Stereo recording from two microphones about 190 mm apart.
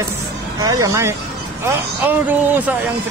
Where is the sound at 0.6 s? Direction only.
15° right (ahead or behind).